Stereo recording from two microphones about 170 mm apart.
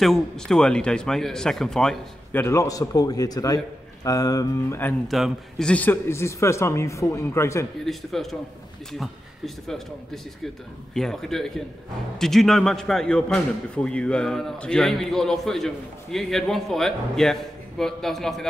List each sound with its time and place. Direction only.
0.0 s a man's voice: centre (ahead or behind)
2.4 s a man's voice: 20° left (ahead or behind)
5.0 s a man's voice: centre (ahead or behind); by 7.6 s 15° left (ahead or behind)
7.8 s a man's voice: centre (ahead or behind)
9.7 s a man's voice: centre (ahead or behind)